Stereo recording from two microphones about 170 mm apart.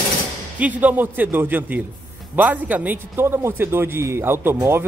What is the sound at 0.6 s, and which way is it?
A man's voice, 10° right (ahead or behind).